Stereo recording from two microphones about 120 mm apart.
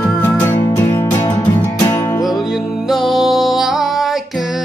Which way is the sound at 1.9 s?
20° left (ahead or behind).